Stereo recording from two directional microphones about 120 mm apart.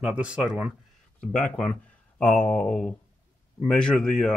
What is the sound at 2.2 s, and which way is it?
Speech, 10° left (ahead or behind).